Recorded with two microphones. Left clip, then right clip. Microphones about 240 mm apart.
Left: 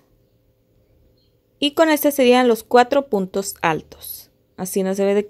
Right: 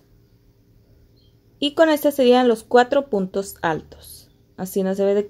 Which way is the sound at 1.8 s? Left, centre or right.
Centre.